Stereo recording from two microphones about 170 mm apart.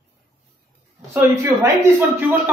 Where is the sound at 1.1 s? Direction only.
15° right (ahead or behind).